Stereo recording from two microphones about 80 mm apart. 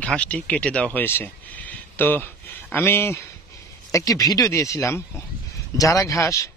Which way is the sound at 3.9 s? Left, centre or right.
Left.